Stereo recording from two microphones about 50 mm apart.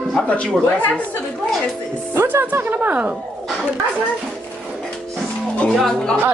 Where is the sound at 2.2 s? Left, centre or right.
Right.